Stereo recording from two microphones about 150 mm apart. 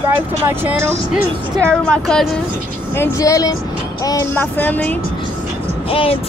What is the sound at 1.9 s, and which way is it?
Speech, 5° left (ahead or behind).